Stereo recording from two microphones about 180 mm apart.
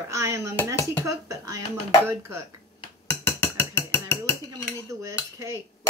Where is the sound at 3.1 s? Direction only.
15° left (ahead or behind).